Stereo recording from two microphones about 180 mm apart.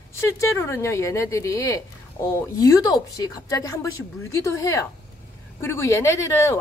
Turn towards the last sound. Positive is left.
turn(degrees=15)  # may be behind; listen again after turning